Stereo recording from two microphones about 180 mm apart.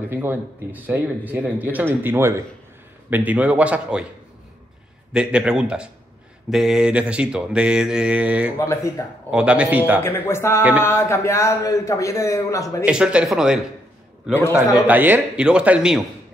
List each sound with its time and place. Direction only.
0.1 s speech: 10° right (ahead or behind)
5.1 s mantra: 5° right (ahead or behind)
8.5 s a man's voice: 15° left (ahead or behind)
9.3 s speech: 5° right (ahead or behind)
10.0 s a man's voice: 15° left (ahead or behind)
12.8 s mantra: 5° right (ahead or behind)
14.3 s a man's voice: 15° left (ahead or behind)
14.9 s speech: 10° right (ahead or behind)